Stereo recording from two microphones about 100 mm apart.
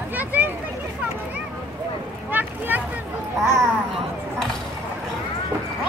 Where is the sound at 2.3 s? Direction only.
20° right (ahead or behind).